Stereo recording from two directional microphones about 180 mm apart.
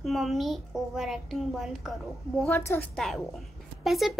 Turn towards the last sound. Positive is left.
turn(degrees=0)  # may be behind; listen again after turning